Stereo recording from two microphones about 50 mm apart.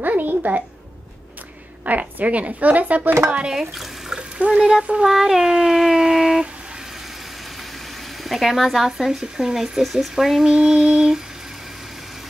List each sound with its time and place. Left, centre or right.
0.0 s a sound: right
1.9 s a woman's voice: right
3.4 s speech: centre
4.2 s speech: right
5.0 s speech: centre
8.2 s speech: centre